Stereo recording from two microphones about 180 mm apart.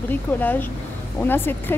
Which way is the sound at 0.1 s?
10° left (ahead or behind).